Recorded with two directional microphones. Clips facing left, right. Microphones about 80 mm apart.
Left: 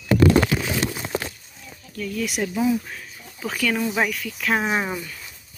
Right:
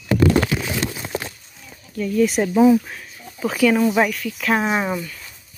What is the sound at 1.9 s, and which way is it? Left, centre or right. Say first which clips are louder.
Speech: right 8 dB; right.